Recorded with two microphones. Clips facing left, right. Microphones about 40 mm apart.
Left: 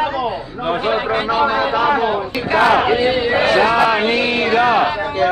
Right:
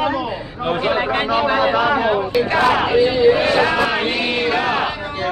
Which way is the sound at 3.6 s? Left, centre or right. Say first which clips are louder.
Left 3 dB; centre.